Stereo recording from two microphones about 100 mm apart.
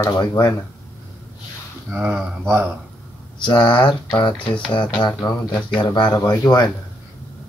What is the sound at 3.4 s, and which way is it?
Speech, 50° left (ahead or behind).